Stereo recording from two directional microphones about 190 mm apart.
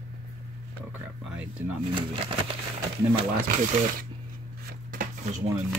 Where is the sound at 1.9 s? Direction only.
30° right (ahead or behind).